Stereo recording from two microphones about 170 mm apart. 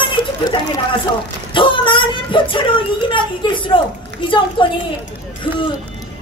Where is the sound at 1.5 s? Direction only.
30° left (ahead or behind).